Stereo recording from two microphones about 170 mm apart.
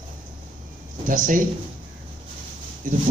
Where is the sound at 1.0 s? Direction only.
50° right (ahead or behind).